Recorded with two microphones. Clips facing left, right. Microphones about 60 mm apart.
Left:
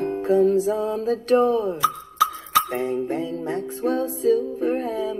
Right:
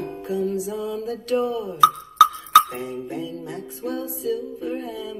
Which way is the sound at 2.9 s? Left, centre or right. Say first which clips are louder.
Left 5 dB; left.